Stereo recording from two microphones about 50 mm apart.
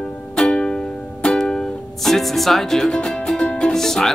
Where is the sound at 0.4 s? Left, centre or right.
Centre.